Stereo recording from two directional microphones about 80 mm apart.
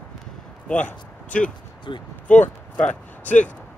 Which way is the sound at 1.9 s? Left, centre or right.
Left.